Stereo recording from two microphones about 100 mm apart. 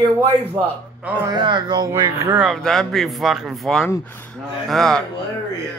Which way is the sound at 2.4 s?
Centre (ahead or behind).